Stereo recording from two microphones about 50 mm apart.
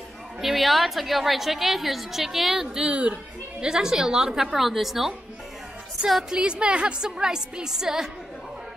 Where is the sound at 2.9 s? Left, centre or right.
Right.